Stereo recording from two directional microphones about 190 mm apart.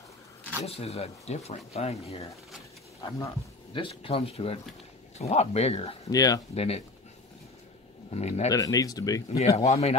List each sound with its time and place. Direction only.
0.7 s speech: 30° left (ahead or behind)
3.0 s speech: 20° left (ahead or behind)
6.1 s speech: 20° left (ahead or behind)
6.5 s speech: 35° left (ahead or behind)
8.1 s speech: 35° left (ahead or behind)
8.5 s speech: 20° left (ahead or behind)
9.7 s speech: 35° left (ahead or behind)